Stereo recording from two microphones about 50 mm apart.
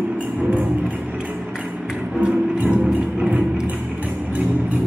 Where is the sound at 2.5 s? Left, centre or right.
Right.